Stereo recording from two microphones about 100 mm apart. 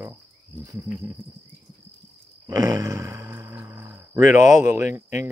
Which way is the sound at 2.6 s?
35° right (ahead or behind).